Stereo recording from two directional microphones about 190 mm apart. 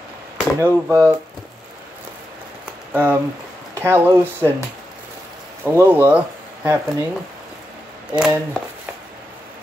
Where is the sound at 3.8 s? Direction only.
10° right (ahead or behind).